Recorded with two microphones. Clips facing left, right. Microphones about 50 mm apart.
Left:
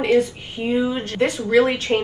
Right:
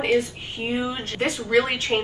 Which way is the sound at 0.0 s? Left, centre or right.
Right.